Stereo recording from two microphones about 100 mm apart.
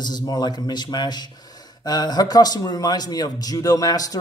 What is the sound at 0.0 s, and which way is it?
Speech, 40° left (ahead or behind).